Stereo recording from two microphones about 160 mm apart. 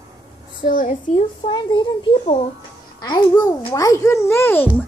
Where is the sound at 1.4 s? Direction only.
30° left (ahead or behind); by 4.7 s 15° left (ahead or behind).